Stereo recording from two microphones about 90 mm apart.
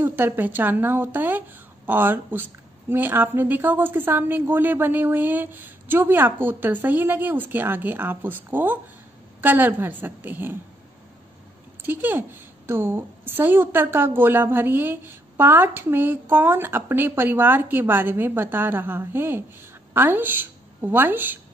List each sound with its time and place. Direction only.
0.0 s a woman's voice: 20° right (ahead or behind)
11.8 s a woman's voice: 20° right (ahead or behind)